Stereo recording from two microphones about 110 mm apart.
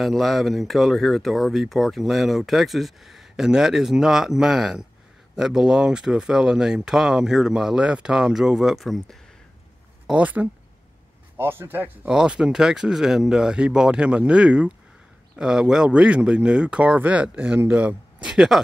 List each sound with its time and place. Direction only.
0.0 s speech: centre (ahead or behind)
10.0 s a man's voice: 10° right (ahead or behind)
12.1 s speech: 10° right (ahead or behind)